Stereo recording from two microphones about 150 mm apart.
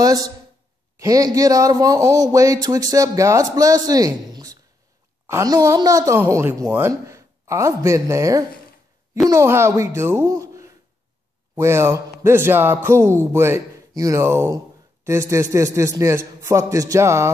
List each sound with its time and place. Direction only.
0.0 s a man's voice: 25° right (ahead or behind)